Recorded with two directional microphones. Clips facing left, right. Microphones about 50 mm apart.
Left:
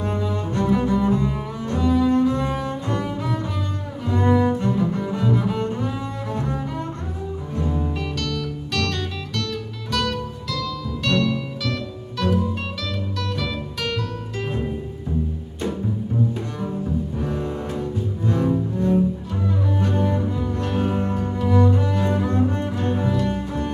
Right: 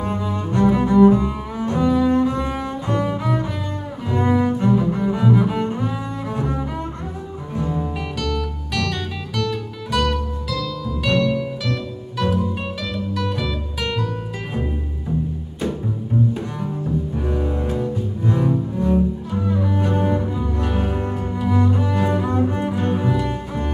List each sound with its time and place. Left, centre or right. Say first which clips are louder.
0.6 s cello: right 6 dB; right
7.7 s music: right 1 dB; centre
19.6 s music: even; centre
21.5 s cello: even; centre